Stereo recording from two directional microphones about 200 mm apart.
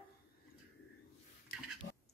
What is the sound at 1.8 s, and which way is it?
Pig, 60° left (ahead or behind).